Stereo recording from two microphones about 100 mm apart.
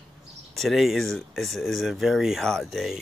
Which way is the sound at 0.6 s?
Centre (ahead or behind).